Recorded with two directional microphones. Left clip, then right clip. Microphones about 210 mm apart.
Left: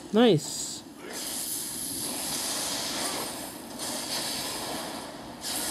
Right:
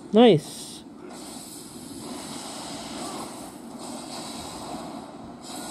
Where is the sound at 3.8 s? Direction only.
10° left (ahead or behind).